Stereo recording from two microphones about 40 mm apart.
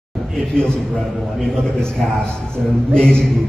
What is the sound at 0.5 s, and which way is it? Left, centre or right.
Speech, centre.